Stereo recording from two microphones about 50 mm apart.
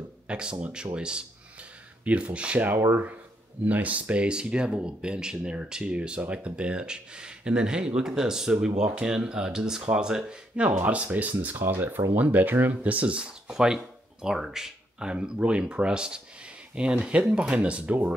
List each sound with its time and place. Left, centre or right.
0.3 s speech: right
2.9 s speech: right
10.8 s speech: right
12.8 s speech: right
13.5 s speech: centre